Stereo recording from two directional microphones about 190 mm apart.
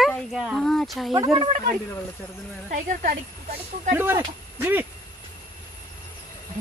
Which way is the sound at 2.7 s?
45° right (ahead or behind).